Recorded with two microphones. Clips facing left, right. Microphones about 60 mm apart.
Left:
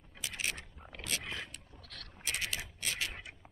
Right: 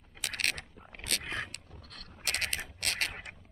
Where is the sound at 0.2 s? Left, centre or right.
Right.